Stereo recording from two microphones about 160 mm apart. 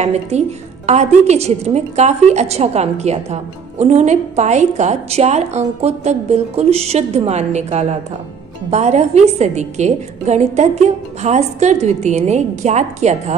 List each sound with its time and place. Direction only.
0.0 s a woman's voice: 45° right (ahead or behind)